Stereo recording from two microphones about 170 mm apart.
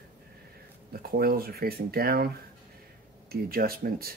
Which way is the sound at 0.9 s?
60° right (ahead or behind).